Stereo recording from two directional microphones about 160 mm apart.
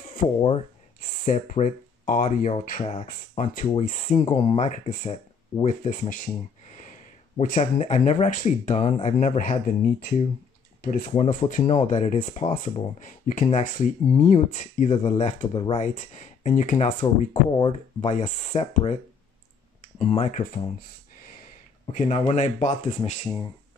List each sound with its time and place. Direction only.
0.0 s a sound: 60° left (ahead or behind)
1.0 s speech: 55° left (ahead or behind)
3.1 s speech: 55° left (ahead or behind)
5.9 s speech: 60° left (ahead or behind); by 9.4 s 45° left (ahead or behind)
9.4 s speech: 55° left (ahead or behind)
17.3 s speech: 30° left (ahead or behind)
18.0 s speech: 50° left (ahead or behind)
21.9 s speech: 50° left (ahead or behind)